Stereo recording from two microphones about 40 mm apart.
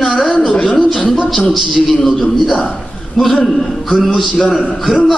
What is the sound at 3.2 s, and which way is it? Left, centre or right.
Speech, centre.